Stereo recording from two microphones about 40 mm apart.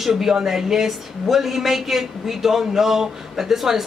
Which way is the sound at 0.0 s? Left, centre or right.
Centre.